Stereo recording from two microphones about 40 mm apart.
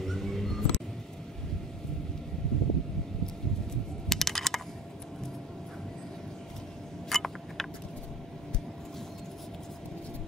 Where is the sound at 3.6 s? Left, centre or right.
Centre.